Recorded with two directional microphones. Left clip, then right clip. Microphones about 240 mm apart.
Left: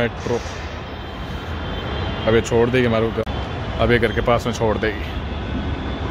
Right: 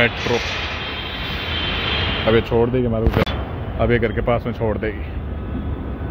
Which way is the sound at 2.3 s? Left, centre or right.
Centre.